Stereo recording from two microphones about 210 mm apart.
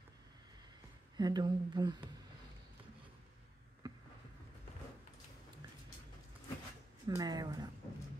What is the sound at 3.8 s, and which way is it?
Boat, 20° right (ahead or behind).